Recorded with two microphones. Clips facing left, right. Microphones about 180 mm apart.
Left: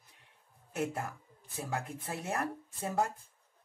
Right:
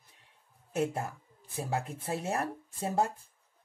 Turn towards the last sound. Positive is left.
turn(degrees=-30)  # may be behind; listen again after turning